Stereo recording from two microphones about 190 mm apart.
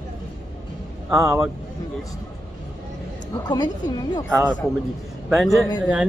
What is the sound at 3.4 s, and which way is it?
Speech, 20° left (ahead or behind).